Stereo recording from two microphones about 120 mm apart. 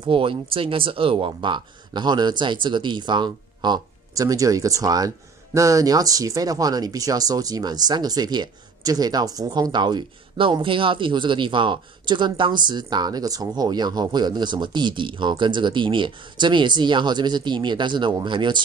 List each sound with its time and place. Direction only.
0.0 s speech: 50° right (ahead or behind)